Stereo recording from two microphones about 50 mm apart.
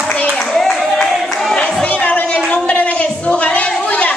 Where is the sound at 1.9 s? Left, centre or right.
Left.